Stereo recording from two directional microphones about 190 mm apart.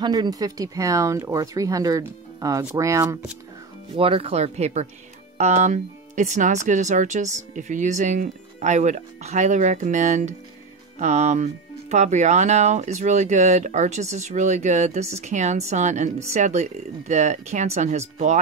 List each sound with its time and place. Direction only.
0.0 s speech: 20° right (ahead or behind)
3.9 s speech: 30° right (ahead or behind)